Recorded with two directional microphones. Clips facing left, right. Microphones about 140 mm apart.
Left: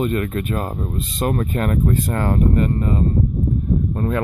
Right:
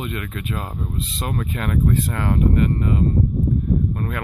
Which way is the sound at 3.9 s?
25° left (ahead or behind).